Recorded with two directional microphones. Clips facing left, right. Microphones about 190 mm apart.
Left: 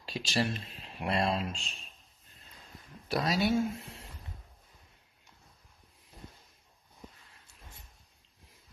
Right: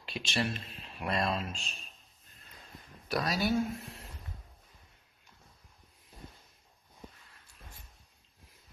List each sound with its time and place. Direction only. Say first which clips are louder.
0.0 s speech: left 2 dB; 35° left (ahead or behind)
3.1 s speech: left 2 dB; 25° left (ahead or behind)
3.7 s speech: right 1 dB; centre (ahead or behind)